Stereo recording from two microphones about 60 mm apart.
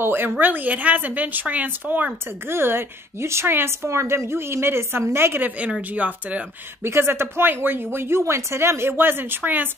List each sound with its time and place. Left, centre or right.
0.0 s a woman's voice: right
5.8 s a woman's voice: right
6.8 s speech: right